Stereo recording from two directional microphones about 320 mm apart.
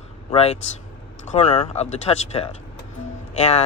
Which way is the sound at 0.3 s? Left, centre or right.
Centre.